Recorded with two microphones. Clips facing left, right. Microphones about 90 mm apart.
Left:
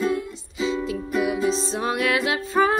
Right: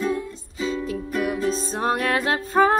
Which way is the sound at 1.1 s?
10° left (ahead or behind).